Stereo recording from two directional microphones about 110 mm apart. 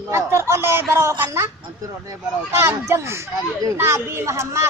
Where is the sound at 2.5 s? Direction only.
20° right (ahead or behind).